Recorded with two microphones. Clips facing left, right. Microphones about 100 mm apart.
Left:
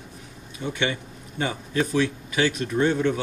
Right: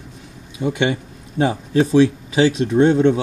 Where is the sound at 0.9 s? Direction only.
85° right.